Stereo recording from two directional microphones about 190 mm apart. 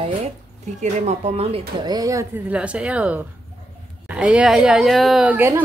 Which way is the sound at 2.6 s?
5° right (ahead or behind).